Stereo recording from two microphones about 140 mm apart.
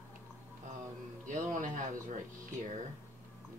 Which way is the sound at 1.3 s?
65° right (ahead or behind).